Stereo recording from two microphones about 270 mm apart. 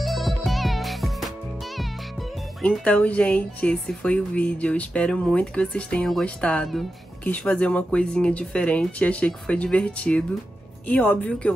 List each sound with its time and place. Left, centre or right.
0.0 s music: centre
1.8 s speech: centre